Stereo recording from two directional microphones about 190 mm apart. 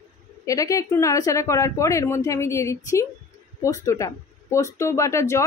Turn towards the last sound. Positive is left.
turn(degrees=15)  # may be behind; listen again after turning